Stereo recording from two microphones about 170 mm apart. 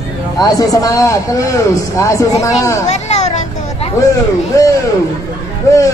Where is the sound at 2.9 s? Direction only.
40° left (ahead or behind).